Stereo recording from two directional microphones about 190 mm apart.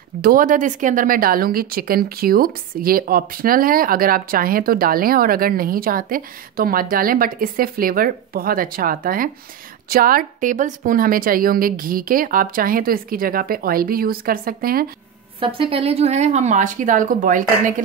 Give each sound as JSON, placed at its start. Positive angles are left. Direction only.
{"t": 0.2, "sound": "speech", "side_deg": -50}
{"t": 15.4, "sound": "speech", "side_deg": -25}